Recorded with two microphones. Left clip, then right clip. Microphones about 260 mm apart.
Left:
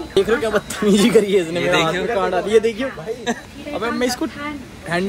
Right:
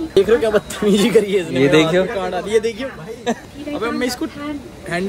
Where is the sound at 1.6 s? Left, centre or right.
Right.